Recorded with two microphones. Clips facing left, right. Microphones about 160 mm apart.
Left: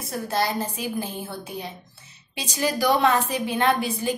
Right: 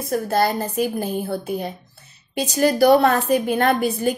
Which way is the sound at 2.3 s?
50° right (ahead or behind).